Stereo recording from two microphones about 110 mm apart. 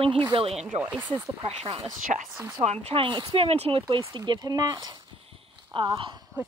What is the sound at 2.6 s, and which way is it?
Speech, 75° right (ahead or behind).